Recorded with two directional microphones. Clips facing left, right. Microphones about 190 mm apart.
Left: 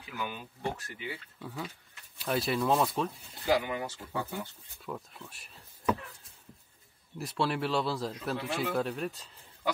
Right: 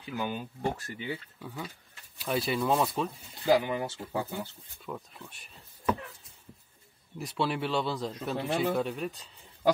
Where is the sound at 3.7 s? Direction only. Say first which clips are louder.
Right 3 dB; 30° right (ahead or behind).